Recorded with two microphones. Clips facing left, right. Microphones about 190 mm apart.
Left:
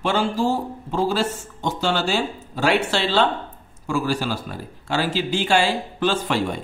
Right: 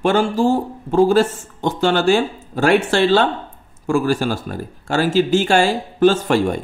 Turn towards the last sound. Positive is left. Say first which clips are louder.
# right 7 dB
turn(degrees=-45)  # may be behind; listen again after turning